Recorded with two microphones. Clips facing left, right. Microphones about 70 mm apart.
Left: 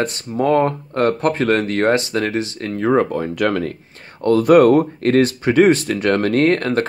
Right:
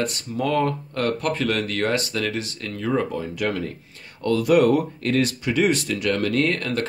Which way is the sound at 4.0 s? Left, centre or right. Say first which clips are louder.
Left 7 dB; left.